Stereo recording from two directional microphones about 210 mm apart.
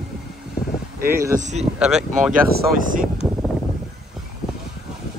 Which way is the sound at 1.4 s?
35° right (ahead or behind).